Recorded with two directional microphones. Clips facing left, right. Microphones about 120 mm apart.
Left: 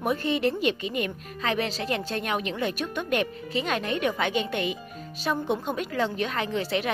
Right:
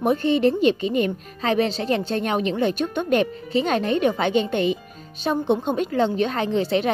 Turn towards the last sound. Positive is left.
turn(degrees=-30)  # may be behind; listen again after turning